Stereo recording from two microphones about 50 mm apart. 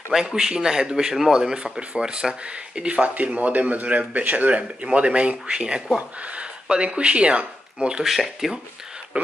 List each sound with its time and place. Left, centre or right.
0.1 s speech: centre
8.0 s speech: centre
9.1 s speech: right